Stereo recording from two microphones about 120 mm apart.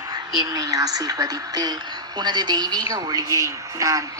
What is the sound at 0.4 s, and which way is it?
A man's voice, 30° right (ahead or behind).